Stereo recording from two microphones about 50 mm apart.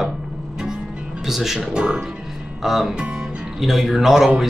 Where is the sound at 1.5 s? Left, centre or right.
Centre.